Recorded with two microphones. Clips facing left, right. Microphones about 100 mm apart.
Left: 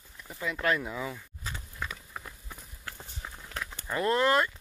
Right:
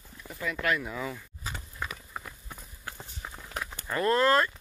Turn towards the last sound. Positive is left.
turn(degrees=15)  # may be behind; listen again after turning